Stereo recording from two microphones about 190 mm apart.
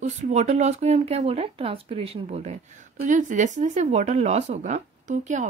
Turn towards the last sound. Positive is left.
turn(degrees=-40)  # may be behind; listen again after turning